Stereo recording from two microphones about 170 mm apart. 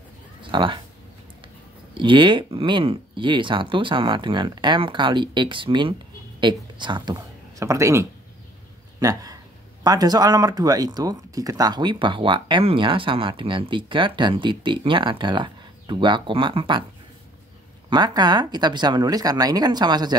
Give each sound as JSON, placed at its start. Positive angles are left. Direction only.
{"t": 0.4, "sound": "speech", "side_deg": -30}
{"t": 2.0, "sound": "speech", "side_deg": -30}
{"t": 17.8, "sound": "speech", "side_deg": -25}